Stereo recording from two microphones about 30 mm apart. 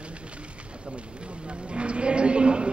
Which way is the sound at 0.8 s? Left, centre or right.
Right.